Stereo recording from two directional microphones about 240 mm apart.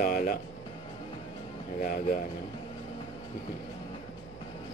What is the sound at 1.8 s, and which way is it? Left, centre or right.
Speech, left.